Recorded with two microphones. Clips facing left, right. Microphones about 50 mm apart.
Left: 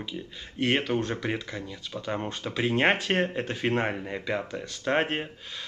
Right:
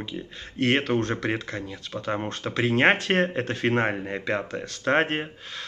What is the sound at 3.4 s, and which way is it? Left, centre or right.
Speech, centre.